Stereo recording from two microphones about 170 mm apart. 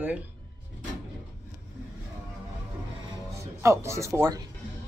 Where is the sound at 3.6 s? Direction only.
15° right (ahead or behind).